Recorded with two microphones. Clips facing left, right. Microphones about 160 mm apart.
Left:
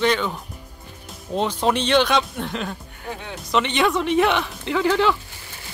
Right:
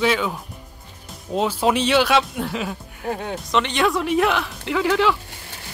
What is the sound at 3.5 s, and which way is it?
Speech, centre (ahead or behind).